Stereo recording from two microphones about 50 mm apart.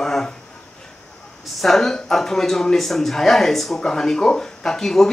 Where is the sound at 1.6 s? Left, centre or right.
Centre.